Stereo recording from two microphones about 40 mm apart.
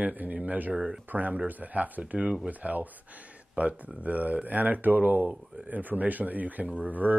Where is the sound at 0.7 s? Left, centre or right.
Centre.